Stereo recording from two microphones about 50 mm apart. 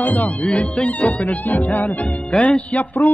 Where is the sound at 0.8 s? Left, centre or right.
Left.